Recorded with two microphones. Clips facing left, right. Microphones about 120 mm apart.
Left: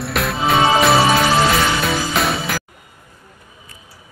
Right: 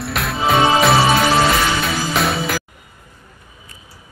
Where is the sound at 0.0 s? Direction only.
Centre (ahead or behind).